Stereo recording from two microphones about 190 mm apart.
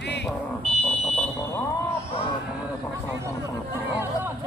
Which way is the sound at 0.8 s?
5° left (ahead or behind).